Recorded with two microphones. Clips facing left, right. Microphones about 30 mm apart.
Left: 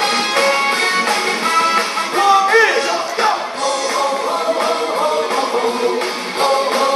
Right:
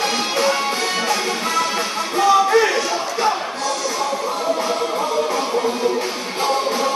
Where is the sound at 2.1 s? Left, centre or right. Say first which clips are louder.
Left 3 dB; left.